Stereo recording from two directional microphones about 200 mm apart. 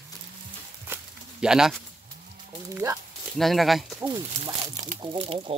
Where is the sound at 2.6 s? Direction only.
15° right (ahead or behind).